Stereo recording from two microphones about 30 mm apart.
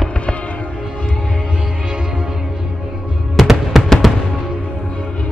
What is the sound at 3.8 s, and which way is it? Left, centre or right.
Music, centre.